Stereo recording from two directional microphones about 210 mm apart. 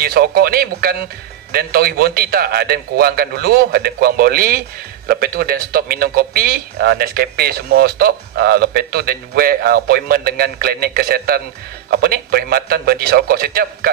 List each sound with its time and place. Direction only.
0.0 s a man's voice: 45° right (ahead or behind)